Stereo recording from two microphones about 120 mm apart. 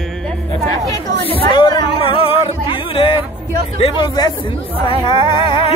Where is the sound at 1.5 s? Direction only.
45° left (ahead or behind).